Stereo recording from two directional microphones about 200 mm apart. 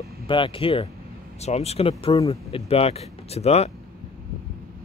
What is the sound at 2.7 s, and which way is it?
Speech, 30° left (ahead or behind).